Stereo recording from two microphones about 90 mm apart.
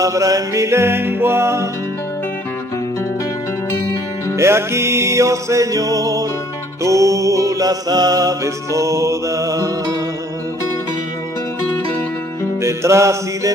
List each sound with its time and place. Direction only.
0.0 s music: 40° right (ahead or behind)
4.4 s music: 30° right (ahead or behind)
12.6 s music: 35° right (ahead or behind)